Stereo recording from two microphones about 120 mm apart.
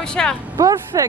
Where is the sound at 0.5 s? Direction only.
30° right (ahead or behind).